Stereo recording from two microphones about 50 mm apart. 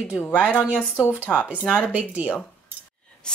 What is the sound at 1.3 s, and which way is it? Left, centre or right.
Speech, left.